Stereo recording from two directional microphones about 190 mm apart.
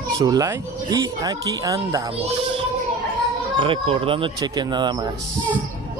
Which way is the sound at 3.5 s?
25° right (ahead or behind).